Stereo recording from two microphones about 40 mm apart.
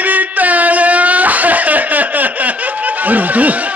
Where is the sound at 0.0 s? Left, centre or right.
Right.